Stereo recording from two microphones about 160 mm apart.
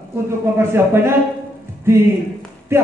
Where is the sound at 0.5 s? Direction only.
15° right (ahead or behind).